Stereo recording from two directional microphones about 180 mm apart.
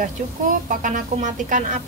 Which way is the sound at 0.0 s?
45° right (ahead or behind).